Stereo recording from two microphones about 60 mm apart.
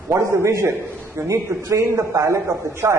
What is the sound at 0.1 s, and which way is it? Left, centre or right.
A man's voice, right.